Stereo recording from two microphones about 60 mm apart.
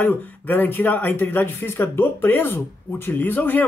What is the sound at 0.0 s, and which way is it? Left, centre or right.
Speech, left.